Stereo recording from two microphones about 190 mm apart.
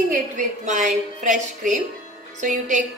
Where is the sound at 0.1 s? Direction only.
40° right (ahead or behind).